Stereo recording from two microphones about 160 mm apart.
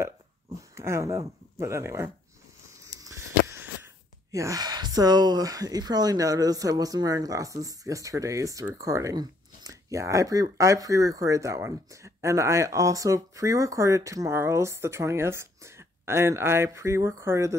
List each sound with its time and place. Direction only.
0.7 s speech: 15° right (ahead or behind)
2.8 s a sound: 20° right (ahead or behind)
4.3 s speech: 20° right (ahead or behind)